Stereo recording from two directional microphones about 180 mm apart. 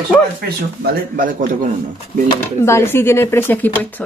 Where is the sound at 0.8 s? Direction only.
50° right (ahead or behind).